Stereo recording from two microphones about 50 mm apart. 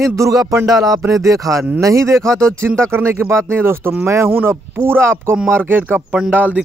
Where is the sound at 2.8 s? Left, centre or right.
Right.